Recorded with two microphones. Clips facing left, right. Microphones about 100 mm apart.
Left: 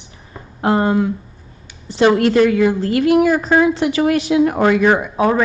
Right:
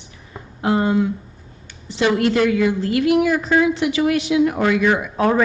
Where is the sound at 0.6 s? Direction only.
50° left (ahead or behind).